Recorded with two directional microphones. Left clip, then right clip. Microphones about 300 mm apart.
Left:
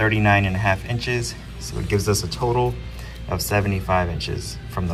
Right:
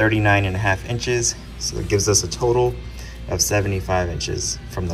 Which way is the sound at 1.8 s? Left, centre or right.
Centre.